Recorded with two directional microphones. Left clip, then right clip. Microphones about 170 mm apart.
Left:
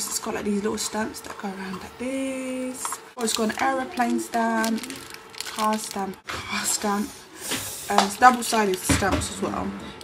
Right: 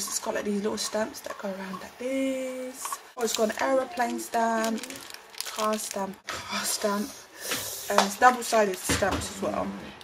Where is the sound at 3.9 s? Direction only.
15° right (ahead or behind).